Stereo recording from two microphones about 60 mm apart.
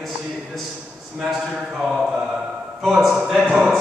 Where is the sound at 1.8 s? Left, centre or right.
Centre.